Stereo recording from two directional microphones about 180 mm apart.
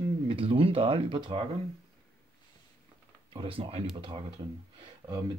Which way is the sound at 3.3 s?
30° right (ahead or behind).